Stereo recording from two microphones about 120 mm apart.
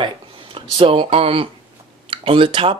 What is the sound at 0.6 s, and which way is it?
Speech, 50° right (ahead or behind).